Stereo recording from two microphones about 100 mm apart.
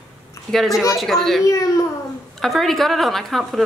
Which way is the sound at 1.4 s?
35° left (ahead or behind).